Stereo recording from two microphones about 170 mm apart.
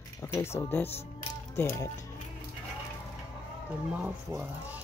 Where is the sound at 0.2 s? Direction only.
15° left (ahead or behind).